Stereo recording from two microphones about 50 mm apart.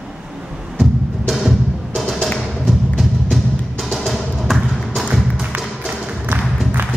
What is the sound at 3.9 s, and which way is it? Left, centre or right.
Music, centre.